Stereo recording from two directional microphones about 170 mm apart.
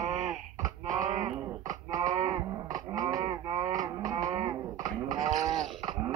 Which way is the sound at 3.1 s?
20° right (ahead or behind).